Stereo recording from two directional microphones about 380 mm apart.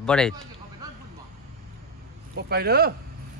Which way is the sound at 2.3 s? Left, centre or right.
Right.